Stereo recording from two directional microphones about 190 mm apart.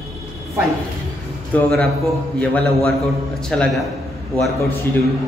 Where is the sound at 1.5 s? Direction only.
10° left (ahead or behind).